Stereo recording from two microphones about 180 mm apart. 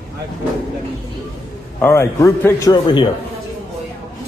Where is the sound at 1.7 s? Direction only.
15° left (ahead or behind).